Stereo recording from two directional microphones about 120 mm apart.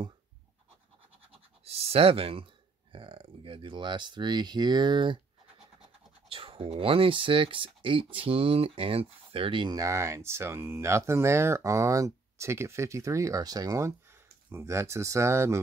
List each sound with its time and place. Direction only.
1.6 s speech: 55° right (ahead or behind)
6.2 s speech: 50° right (ahead or behind); by 15.6 s 25° right (ahead or behind)